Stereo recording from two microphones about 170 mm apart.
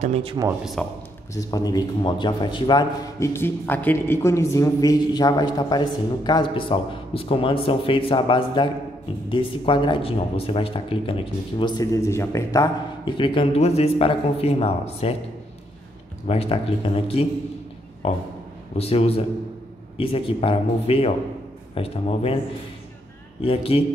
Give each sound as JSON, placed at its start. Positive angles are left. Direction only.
{"t": 0.0, "sound": "speech", "side_deg": -35}
{"t": 0.8, "sound": "a man's voice", "side_deg": 5}
{"t": 1.3, "sound": "a man's voice", "side_deg": 20}
{"t": 16.3, "sound": "speech", "side_deg": 35}
{"t": 23.4, "sound": "speech", "side_deg": 35}